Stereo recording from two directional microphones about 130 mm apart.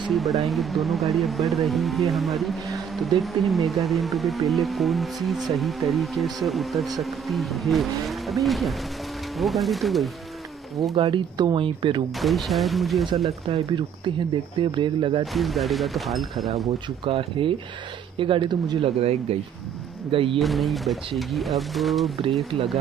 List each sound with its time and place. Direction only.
0.1 s speech: centre (ahead or behind)
11.0 s speech: 40° right (ahead or behind)
12.2 s speech: centre (ahead or behind)
13.5 s speech: 40° right (ahead or behind)
15.3 s speech: centre (ahead or behind)
17.0 s speech: 45° right (ahead or behind)
20.3 s speech: centre (ahead or behind)